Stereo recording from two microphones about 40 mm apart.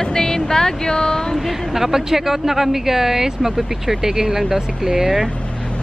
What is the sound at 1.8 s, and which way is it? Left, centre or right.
Speech, centre.